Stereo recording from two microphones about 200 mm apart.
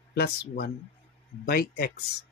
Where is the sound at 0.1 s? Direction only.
50° left (ahead or behind).